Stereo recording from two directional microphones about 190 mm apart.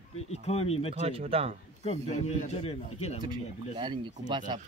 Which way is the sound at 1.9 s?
35° left (ahead or behind).